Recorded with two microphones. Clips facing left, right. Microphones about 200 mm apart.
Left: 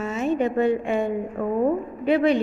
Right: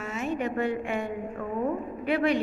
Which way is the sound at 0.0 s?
25° left (ahead or behind).